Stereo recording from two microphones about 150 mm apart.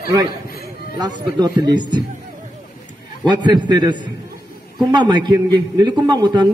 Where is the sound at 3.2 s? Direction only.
30° right (ahead or behind).